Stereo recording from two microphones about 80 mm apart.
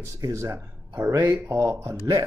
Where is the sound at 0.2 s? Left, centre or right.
Right.